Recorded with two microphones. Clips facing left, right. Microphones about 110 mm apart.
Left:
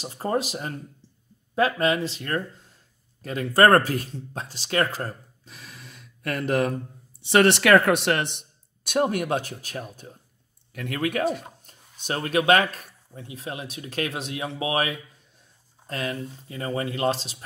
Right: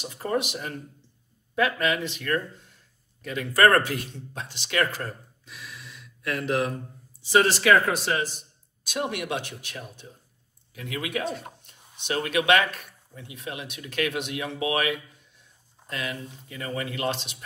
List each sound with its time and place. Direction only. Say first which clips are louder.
0.0 s speech: left 2 dB; 35° left (ahead or behind)
7.2 s speech: left 3 dB; 65° left (ahead or behind)
8.9 s speech: left 6 dB; 45° left (ahead or behind)
10.7 s speech: left 4 dB; 50° left (ahead or behind); by 17.4 s 35° left (ahead or behind)